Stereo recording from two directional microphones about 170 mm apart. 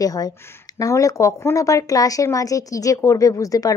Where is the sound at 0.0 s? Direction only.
20° left (ahead or behind).